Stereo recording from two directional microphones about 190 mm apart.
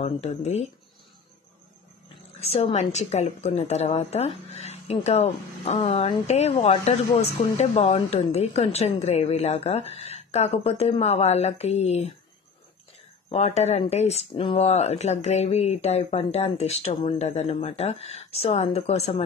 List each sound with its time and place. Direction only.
0.0 s a woman's voice: 35° left (ahead or behind)
2.4 s a woman's voice: 30° left (ahead or behind)
13.3 s a woman's voice: 35° left (ahead or behind)